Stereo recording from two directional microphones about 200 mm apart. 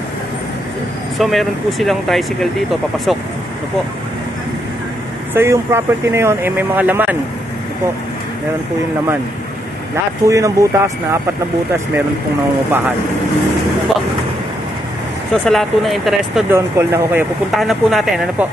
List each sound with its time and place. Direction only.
1.1 s speech: centre (ahead or behind)
5.3 s speech: 10° right (ahead or behind)
10.2 s speech: 15° right (ahead or behind)
15.3 s speech: centre (ahead or behind)
16.4 s speech: 15° right (ahead or behind)
17.6 s speech: centre (ahead or behind)